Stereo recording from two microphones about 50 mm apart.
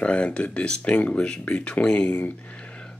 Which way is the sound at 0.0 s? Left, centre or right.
Left.